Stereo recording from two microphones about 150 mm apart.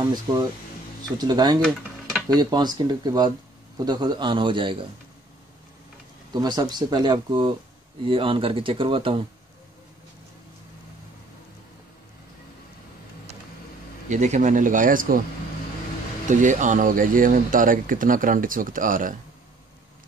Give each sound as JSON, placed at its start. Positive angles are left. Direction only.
{"t": 0.1, "sound": "a man's voice", "side_deg": -25}
{"t": 6.3, "sound": "a man's voice", "side_deg": -25}
{"t": 14.0, "sound": "speech", "side_deg": -50}
{"t": 16.3, "sound": "speech", "side_deg": -55}